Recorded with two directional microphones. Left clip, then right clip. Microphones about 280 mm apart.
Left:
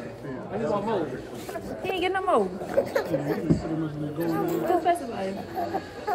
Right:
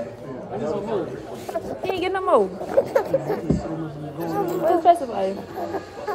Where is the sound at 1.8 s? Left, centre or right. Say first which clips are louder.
Right 1 dB; centre.